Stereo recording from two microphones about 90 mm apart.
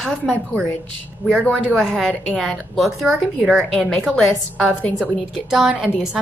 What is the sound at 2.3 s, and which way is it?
Speech, 5° left (ahead or behind).